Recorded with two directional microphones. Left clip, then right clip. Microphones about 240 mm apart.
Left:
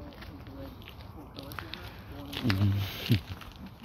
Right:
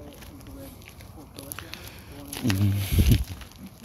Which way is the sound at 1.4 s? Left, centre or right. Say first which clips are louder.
Right 1 dB; right.